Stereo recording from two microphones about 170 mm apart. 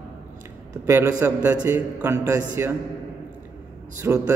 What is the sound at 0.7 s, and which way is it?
A man's voice, 15° right (ahead or behind).